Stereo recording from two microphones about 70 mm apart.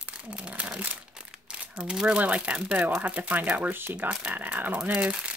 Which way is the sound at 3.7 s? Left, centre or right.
Right.